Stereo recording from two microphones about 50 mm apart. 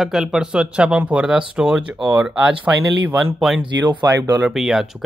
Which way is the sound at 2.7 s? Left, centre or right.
Right.